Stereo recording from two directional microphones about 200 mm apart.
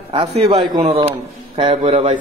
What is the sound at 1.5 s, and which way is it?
Speech, 35° right (ahead or behind).